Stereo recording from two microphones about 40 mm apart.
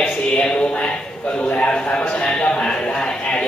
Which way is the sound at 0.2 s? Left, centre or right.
Left.